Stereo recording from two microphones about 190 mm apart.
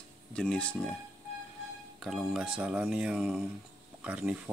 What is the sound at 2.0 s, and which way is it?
Speech, centre (ahead or behind).